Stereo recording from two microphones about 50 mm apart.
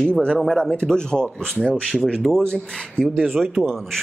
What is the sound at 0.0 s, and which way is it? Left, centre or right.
Speech, centre.